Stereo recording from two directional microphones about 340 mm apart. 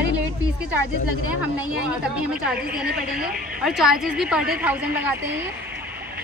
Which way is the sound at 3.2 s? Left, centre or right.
Right.